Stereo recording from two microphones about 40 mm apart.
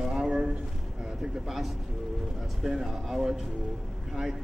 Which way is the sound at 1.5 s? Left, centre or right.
Centre.